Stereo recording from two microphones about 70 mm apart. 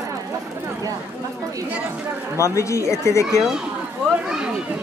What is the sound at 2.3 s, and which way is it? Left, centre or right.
Speech, left.